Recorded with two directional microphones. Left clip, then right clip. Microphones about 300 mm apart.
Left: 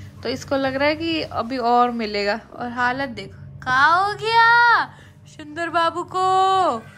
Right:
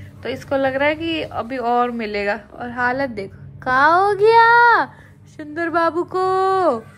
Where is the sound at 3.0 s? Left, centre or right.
Centre.